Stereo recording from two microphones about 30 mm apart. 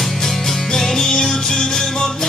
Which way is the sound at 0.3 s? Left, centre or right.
Centre.